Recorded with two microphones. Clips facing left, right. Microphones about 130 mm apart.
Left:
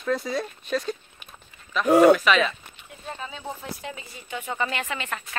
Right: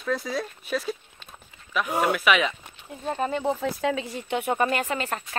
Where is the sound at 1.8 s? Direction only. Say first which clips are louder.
Left 10 dB; 90° left.